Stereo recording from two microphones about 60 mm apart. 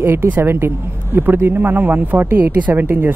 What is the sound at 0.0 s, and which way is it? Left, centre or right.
Speech, right.